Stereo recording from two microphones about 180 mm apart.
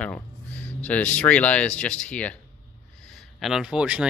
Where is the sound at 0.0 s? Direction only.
5° left (ahead or behind).